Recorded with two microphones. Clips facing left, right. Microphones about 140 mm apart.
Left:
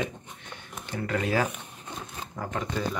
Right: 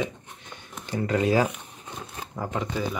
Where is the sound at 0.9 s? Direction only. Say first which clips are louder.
Right 5 dB; 25° right (ahead or behind).